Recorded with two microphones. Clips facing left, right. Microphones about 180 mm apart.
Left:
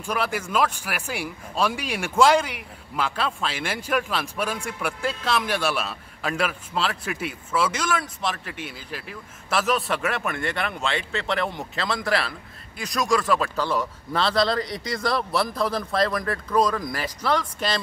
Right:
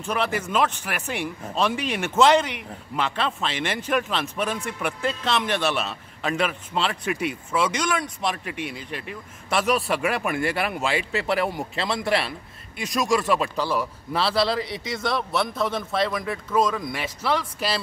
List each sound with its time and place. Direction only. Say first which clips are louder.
0.0 s a man's voice: right 1 dB; 10° left (ahead or behind)